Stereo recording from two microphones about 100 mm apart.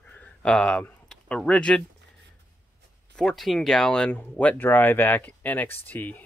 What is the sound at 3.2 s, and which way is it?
Speech, 5° left (ahead or behind).